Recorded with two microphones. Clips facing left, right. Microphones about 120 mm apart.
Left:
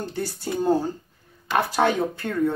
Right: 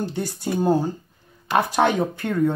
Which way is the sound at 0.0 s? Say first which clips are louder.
Right 3 dB; 15° right (ahead or behind).